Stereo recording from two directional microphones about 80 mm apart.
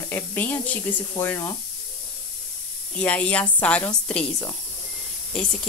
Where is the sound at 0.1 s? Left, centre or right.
Left.